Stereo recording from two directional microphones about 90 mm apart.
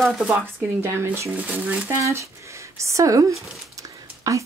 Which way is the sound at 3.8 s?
35° right (ahead or behind).